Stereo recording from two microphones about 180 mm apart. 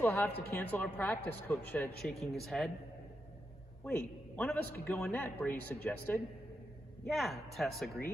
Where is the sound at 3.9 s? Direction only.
5° left (ahead or behind).